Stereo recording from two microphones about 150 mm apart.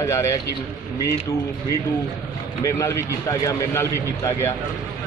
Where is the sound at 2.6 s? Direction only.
20° left (ahead or behind).